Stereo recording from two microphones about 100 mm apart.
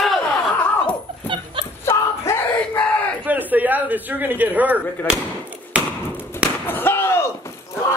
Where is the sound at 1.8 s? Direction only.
30° left (ahead or behind).